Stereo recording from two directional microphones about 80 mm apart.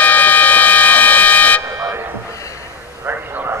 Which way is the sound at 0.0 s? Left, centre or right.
Left.